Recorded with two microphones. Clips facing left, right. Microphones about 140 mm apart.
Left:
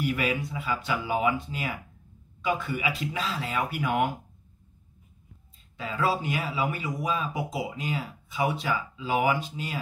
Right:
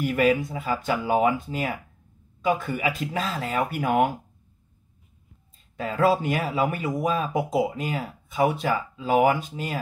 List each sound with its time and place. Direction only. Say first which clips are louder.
0.0 s speech: right 6 dB; 50° right (ahead or behind)
5.8 s speech: right 6 dB; 50° right (ahead or behind)